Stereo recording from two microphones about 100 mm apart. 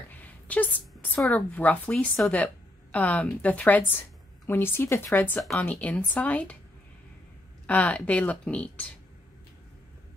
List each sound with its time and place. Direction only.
0.1 s a sound: 15° left (ahead or behind)
1.3 s a woman's voice: 15° left (ahead or behind)
7.6 s speech: 15° left (ahead or behind)